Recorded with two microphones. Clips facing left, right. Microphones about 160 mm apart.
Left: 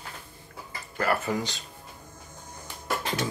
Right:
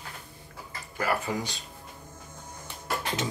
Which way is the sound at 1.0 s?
15° right (ahead or behind).